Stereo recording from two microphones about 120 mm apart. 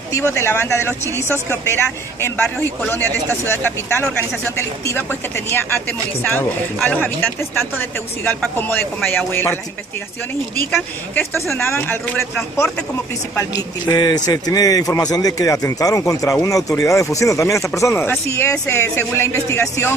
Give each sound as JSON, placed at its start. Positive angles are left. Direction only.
{"t": 0.3, "sound": "a man's voice", "side_deg": 20}
{"t": 11.1, "sound": "a man's voice", "side_deg": 20}
{"t": 13.4, "sound": "a man's voice", "side_deg": 30}